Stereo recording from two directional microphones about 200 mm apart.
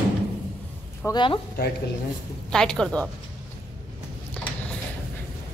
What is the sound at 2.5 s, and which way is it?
Speech, 5° left (ahead or behind).